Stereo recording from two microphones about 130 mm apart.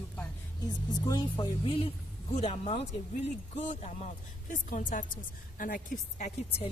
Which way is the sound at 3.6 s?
60° left (ahead or behind).